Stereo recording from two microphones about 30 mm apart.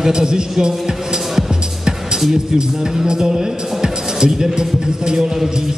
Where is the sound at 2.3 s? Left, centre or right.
Right.